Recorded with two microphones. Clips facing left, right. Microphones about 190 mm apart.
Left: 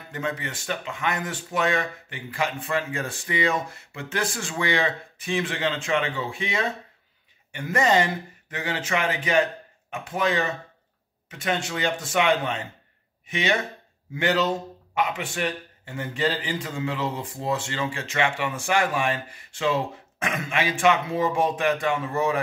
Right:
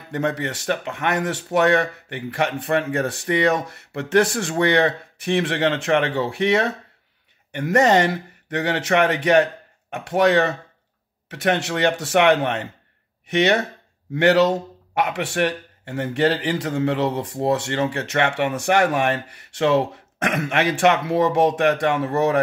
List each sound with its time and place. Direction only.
0.1 s a man's voice: 65° right (ahead or behind)